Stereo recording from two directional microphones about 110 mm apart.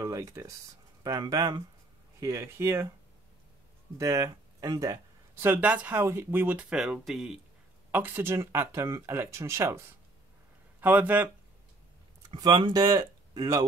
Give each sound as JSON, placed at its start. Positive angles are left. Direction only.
{"t": 0.0, "sound": "speech", "side_deg": -30}
{"t": 4.0, "sound": "speech", "side_deg": -30}
{"t": 5.3, "sound": "speech", "side_deg": -20}
{"t": 6.7, "sound": "speech", "side_deg": -5}
{"t": 7.9, "sound": "speech", "side_deg": -15}
{"t": 12.4, "sound": "speech", "side_deg": -45}